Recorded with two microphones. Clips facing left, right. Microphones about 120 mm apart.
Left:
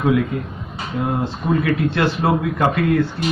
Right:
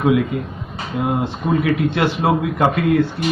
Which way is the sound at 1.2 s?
20° right (ahead or behind).